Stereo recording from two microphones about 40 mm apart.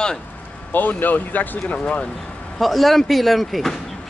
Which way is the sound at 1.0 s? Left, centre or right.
Left.